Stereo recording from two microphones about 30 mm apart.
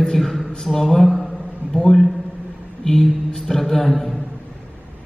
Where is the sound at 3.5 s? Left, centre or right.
Left.